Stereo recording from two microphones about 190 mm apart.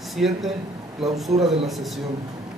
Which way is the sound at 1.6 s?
Centre (ahead or behind).